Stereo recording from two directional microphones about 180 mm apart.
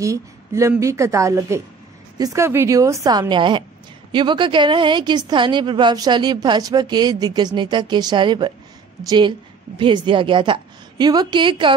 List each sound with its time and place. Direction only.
0.0 s a woman's voice: 15° right (ahead or behind)